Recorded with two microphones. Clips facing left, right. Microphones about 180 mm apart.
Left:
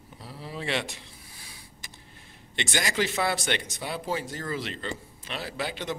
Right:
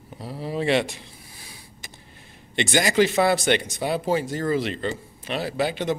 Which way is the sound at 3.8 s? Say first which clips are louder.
Right 8 dB; 70° right (ahead or behind).